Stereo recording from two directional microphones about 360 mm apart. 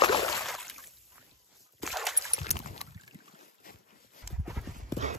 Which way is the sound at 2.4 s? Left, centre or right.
Centre.